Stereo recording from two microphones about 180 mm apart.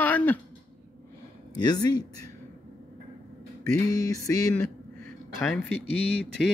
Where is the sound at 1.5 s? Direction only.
20° left (ahead or behind).